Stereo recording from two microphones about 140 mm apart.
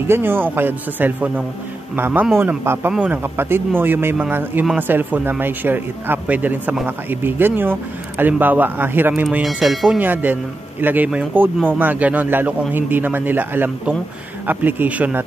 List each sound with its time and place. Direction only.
0.0 s a man's voice: 15° right (ahead or behind)